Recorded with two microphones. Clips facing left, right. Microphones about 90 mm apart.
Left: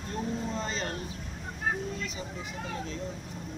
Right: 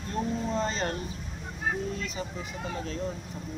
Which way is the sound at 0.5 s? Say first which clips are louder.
Right 4 dB; 35° right (ahead or behind).